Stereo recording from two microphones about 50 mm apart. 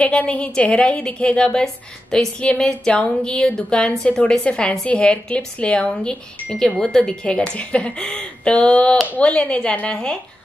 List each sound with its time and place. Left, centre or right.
0.0 s a woman's voice: left